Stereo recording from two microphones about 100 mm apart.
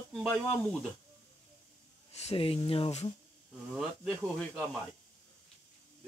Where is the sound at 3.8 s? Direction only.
Centre (ahead or behind).